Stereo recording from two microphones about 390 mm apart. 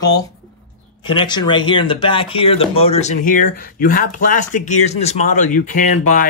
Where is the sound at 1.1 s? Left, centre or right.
Centre.